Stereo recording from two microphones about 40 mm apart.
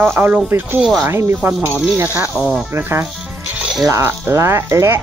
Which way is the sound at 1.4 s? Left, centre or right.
Right.